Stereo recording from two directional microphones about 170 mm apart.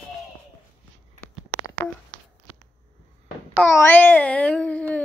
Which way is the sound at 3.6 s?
10° left (ahead or behind).